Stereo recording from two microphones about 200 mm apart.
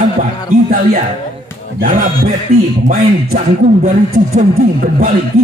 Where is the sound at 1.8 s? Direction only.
40° right (ahead or behind).